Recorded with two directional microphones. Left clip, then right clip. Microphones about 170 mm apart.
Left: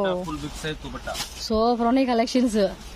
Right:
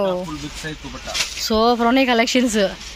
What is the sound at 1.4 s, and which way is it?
Speech, centre (ahead or behind).